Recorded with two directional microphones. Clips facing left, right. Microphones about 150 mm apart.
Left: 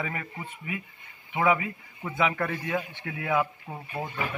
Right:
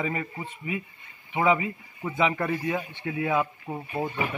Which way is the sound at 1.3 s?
20° right (ahead or behind).